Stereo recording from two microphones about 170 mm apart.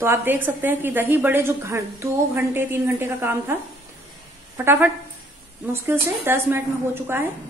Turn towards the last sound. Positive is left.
turn(degrees=-15)  # may be behind; listen again after turning